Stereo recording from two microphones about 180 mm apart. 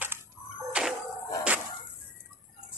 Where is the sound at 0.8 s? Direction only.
5° right (ahead or behind).